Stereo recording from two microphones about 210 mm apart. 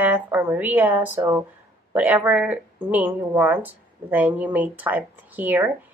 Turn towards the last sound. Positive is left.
turn(degrees=-10)  # may be behind; listen again after turning